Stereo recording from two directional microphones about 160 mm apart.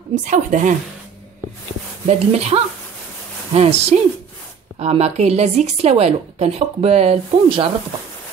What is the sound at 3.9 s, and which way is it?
Speech, 40° right (ahead or behind).